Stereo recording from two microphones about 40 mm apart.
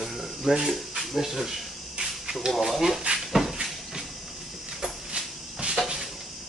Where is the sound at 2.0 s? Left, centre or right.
Centre.